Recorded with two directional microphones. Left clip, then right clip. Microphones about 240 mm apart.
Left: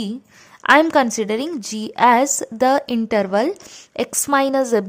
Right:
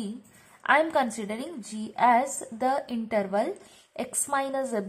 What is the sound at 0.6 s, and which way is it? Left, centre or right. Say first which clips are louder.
A woman's voice: left 9 dB; left.